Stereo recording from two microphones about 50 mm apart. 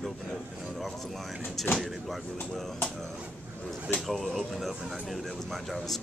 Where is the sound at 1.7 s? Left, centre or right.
Centre.